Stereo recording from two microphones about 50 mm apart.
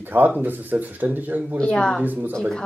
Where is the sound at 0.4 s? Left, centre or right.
Right.